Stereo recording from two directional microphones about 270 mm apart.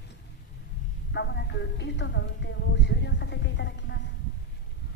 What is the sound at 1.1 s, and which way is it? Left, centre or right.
A woman's voice, left.